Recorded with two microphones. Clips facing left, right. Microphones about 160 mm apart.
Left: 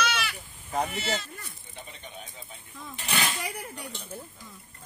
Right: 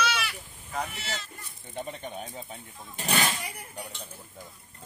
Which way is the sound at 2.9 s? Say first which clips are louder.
Right 3 dB; 45° right (ahead or behind).